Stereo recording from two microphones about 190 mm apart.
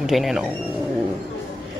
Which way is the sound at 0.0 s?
Centre (ahead or behind).